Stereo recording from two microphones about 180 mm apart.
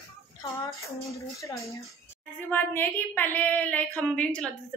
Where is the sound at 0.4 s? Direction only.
15° left (ahead or behind).